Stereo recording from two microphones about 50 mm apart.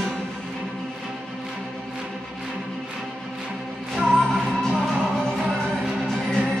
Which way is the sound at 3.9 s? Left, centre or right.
Centre.